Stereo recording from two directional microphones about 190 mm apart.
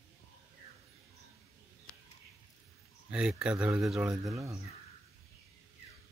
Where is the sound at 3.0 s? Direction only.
5° right (ahead or behind).